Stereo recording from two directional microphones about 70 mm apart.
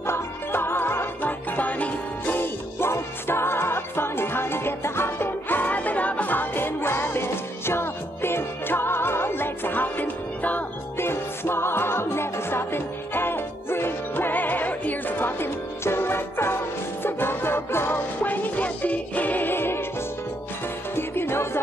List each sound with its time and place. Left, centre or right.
0.0 s music: left
11.1 s music: left
20.9 s music: left